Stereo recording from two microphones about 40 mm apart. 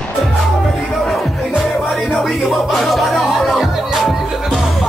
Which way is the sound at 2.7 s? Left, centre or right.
Centre.